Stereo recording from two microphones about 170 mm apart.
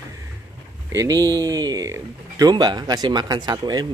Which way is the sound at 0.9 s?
20° right (ahead or behind).